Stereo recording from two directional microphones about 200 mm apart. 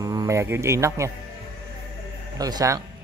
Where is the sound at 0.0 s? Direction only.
20° right (ahead or behind).